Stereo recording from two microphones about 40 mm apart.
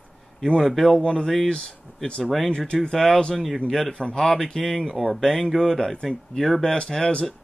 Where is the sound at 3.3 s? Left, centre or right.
Centre.